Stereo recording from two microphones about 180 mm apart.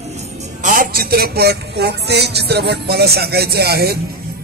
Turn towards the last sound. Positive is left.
turn(degrees=-60)  # may be behind; listen again after turning